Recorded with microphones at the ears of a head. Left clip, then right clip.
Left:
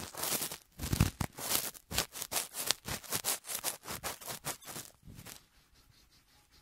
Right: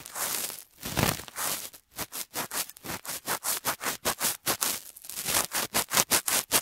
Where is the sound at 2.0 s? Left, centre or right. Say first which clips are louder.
Right 3 dB; right.